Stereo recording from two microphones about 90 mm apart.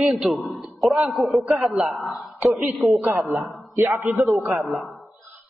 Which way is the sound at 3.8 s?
30° right (ahead or behind).